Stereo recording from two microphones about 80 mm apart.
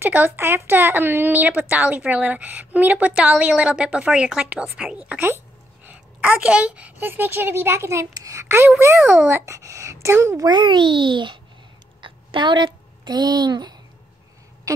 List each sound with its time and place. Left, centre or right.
0.0 s speech: right
6.4 s speech: centre; by 8.5 s right
8.5 s speech: right
10.4 s a child's voice: right
12.0 s a sound: right